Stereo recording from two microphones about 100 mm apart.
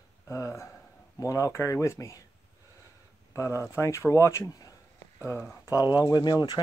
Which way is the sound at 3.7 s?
30° left (ahead or behind).